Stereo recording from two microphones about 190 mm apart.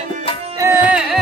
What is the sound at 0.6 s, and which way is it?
Music, 10° right (ahead or behind).